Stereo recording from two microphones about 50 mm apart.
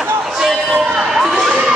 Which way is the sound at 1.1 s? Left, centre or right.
Centre.